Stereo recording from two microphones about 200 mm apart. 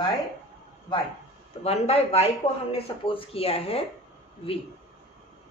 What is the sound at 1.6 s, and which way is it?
A woman's voice, 30° left (ahead or behind).